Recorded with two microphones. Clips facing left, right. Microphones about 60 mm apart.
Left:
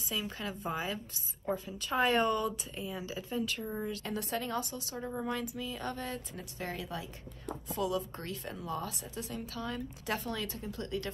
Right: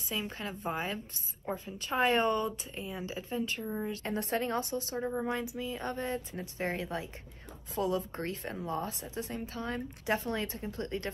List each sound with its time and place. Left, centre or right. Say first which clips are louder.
0.1 s a woman's voice: right 1 dB; right
3.6 s speech: right 1 dB; centre
3.9 s a woman's voice: right 3 dB; right
5.0 s a woman's voice: left 1 dB; right